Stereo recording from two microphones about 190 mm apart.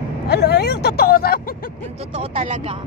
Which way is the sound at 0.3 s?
60° left (ahead or behind).